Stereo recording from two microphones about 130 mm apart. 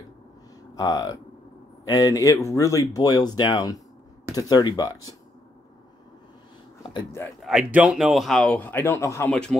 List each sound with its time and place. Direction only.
0.7 s cattle: 35° left (ahead or behind)
1.9 s speech: 30° left (ahead or behind)
7.4 s speech: 5° right (ahead or behind); by 9.3 s 20° left (ahead or behind)
9.3 s speech: 5° left (ahead or behind)